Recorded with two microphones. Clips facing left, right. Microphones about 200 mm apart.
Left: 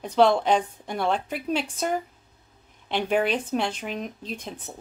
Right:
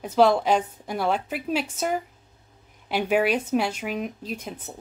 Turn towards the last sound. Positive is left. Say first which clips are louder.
# right 1 dB
turn(degrees=-10)  # may be behind; listen again after turning